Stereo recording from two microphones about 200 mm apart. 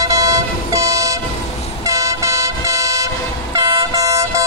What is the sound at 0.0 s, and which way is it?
Vehicle, 15° right (ahead or behind).